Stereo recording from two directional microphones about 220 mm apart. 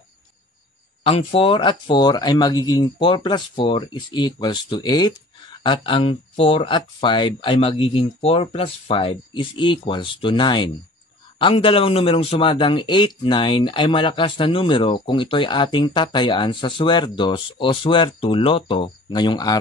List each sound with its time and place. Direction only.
1.0 s speech: 25° left (ahead or behind)